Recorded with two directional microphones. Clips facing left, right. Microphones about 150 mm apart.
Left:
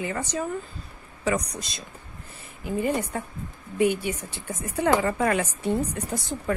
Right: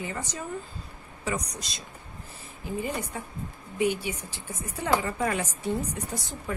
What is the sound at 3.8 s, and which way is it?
A woman's voice, 55° left (ahead or behind).